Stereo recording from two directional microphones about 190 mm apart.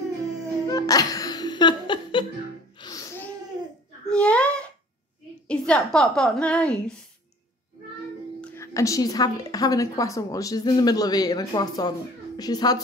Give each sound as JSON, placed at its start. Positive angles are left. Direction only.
{"t": 0.7, "sound": "music", "side_deg": 20}
{"t": 2.8, "sound": "gasp", "side_deg": 20}
{"t": 4.1, "sound": "a sound", "side_deg": 5}
{"t": 5.5, "sound": "a woman's voice", "side_deg": 5}
{"t": 8.4, "sound": "a woman's voice", "side_deg": 15}